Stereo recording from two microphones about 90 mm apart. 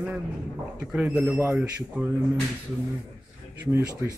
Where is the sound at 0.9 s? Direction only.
10° right (ahead or behind).